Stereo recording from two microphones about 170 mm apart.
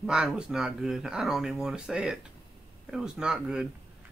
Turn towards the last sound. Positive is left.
turn(degrees=-5)  # may be behind; listen again after turning